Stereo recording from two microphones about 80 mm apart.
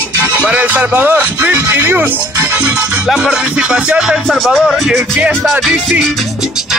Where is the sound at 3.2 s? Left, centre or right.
Centre.